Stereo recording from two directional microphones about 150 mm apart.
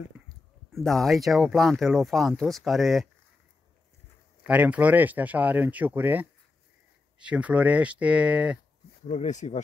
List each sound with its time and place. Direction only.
0.7 s speech: centre (ahead or behind)
4.5 s speech: 10° right (ahead or behind)
9.0 s speech: 50° left (ahead or behind)